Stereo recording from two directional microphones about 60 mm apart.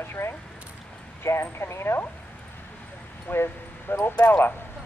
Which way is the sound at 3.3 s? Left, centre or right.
Left.